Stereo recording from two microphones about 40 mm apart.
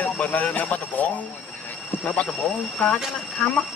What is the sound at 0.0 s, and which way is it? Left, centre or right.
Speech, left.